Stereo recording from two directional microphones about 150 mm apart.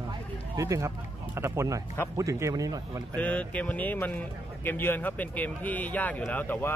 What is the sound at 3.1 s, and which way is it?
Speech, 10° left (ahead or behind).